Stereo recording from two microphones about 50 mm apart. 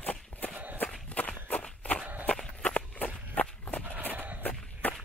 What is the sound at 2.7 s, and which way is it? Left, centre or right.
Walk, left.